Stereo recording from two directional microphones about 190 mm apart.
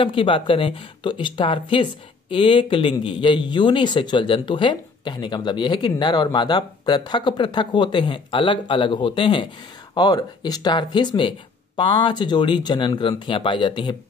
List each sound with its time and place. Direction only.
0.0 s speech: 25° left (ahead or behind)